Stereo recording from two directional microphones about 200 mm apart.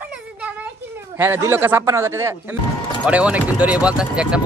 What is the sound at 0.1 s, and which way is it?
Children playing, 5° right (ahead or behind).